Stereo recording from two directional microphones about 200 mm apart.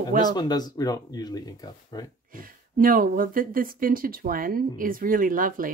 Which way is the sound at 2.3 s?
45° right (ahead or behind).